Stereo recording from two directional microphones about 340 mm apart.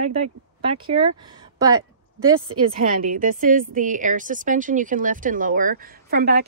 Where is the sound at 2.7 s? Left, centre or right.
Right.